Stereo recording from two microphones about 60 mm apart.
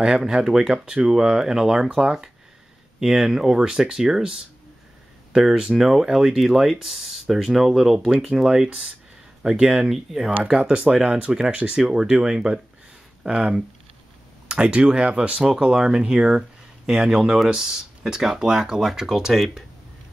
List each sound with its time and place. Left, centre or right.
0.0 s speech: centre